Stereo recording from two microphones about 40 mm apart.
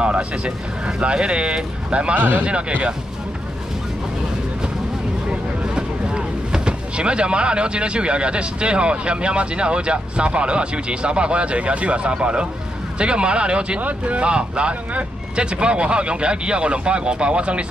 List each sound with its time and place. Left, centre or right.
0.0 s speech: right
2.1 s speech: right
5.3 s speech: right